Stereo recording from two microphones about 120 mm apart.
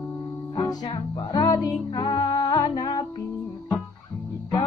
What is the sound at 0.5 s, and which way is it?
Music, 40° left (ahead or behind).